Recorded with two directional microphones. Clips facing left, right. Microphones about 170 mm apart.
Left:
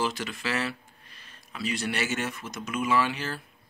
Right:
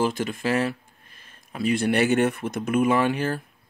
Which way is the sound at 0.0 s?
50° right (ahead or behind).